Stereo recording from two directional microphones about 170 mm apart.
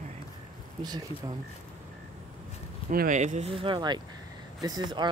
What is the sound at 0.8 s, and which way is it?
Speech, 25° right (ahead or behind).